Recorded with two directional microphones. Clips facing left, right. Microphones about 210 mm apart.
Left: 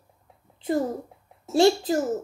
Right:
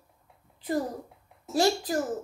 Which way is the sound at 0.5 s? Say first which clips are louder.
Left 4 dB; 25° left (ahead or behind).